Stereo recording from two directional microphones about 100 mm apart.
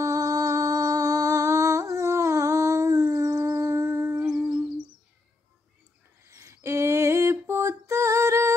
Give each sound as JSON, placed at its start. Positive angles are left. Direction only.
{"t": 0.0, "sound": "music", "side_deg": -35}
{"t": 3.8, "sound": "humming", "side_deg": -30}
{"t": 4.2, "sound": "humming", "side_deg": -10}
{"t": 6.2, "sound": "a sound", "side_deg": -30}